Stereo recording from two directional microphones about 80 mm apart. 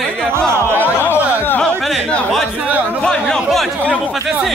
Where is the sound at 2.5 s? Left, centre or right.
Centre.